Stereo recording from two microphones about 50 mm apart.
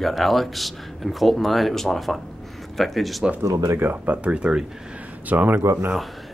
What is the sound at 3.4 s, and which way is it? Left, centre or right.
Speech, right.